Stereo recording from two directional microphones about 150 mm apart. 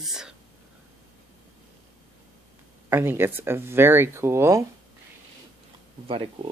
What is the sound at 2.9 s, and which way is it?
Speech, 15° right (ahead or behind).